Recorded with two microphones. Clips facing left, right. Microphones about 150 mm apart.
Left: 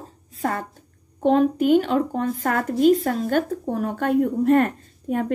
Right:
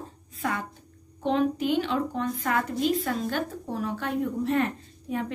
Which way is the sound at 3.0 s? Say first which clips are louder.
Left 7 dB; 45° left (ahead or behind).